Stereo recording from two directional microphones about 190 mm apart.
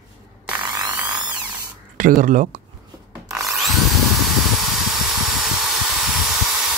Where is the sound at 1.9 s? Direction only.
45° right (ahead or behind).